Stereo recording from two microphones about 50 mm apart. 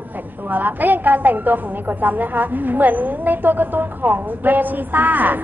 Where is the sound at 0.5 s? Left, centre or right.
Right.